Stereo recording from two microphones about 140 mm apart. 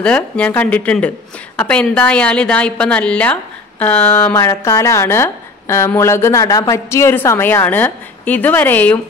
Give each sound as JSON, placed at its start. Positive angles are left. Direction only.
{"t": 0.0, "sound": "a woman's voice", "side_deg": 10}